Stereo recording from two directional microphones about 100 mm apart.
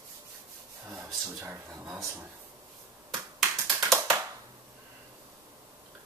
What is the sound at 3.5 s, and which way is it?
Tap, 30° right (ahead or behind).